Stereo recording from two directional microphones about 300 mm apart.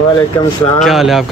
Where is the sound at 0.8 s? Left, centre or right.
Centre.